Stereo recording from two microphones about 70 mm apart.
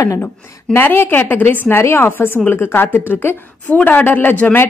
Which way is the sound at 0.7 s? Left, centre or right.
Left.